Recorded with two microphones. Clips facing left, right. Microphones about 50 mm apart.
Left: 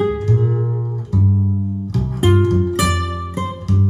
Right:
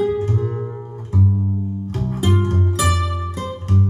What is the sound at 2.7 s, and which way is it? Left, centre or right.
Music, left.